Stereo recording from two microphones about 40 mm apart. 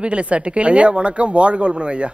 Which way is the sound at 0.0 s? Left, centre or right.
Right.